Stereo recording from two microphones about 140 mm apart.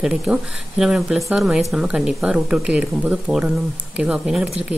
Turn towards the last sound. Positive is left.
turn(degrees=-5)  # may be behind; listen again after turning